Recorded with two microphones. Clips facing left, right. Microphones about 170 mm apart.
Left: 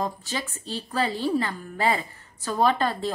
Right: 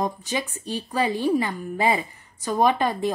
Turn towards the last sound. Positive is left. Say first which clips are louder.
# right 2 dB
turn(degrees=-15)  # may be behind; listen again after turning